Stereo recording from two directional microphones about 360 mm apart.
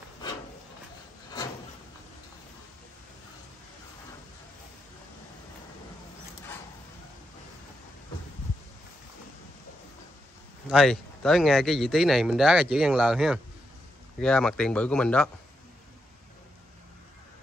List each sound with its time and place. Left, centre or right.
10.7 s speech: centre